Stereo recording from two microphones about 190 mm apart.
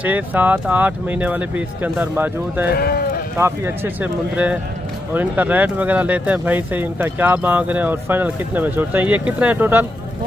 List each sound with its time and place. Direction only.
0.0 s speech: 10° right (ahead or behind)
2.7 s speech: 55° left (ahead or behind)
3.3 s speech: 15° right (ahead or behind)